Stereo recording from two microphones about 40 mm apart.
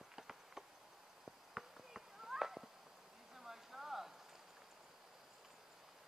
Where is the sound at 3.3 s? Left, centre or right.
Centre.